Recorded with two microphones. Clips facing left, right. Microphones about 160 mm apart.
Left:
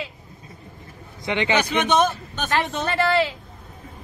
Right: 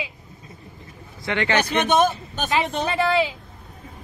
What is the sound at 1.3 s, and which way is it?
Speech, 15° left (ahead or behind).